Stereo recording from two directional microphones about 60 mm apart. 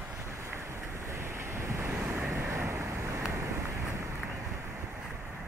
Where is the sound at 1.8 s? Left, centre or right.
Right.